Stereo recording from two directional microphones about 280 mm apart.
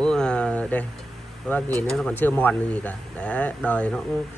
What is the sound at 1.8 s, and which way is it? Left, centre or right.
Speech, centre.